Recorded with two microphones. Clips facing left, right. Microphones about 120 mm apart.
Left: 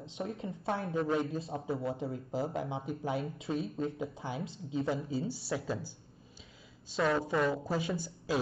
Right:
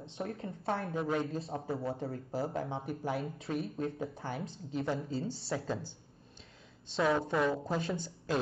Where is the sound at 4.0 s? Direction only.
15° left (ahead or behind).